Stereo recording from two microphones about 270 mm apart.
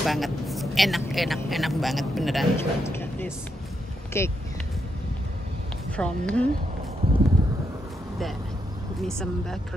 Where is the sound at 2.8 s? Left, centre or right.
Centre.